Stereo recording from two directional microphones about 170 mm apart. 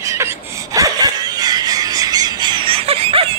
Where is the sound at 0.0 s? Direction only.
15° right (ahead or behind).